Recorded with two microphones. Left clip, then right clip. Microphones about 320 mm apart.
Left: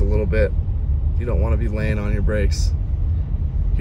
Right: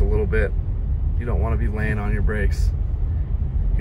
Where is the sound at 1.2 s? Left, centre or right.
Centre.